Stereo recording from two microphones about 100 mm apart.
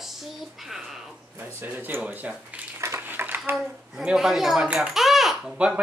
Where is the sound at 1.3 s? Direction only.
20° right (ahead or behind).